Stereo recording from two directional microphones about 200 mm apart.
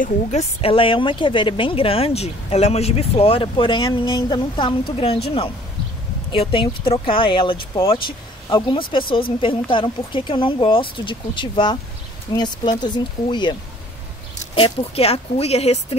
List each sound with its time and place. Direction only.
0.0 s a woman's voice: 35° left (ahead or behind)